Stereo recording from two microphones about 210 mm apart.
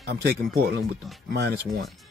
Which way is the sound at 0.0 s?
50° right (ahead or behind).